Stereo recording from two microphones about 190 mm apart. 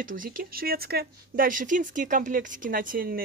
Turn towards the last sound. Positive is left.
turn(degrees=-45)  # may be behind; listen again after turning